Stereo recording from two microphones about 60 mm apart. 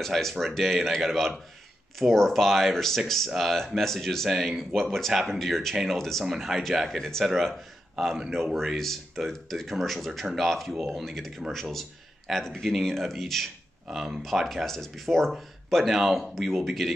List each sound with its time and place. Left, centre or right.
0.0 s a man's voice: centre
7.0 s a man's voice: centre